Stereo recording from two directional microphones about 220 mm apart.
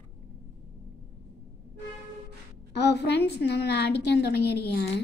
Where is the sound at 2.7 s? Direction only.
50° left (ahead or behind).